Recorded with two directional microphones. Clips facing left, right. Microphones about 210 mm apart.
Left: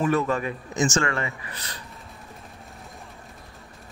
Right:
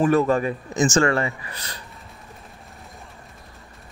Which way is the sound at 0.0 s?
40° right (ahead or behind).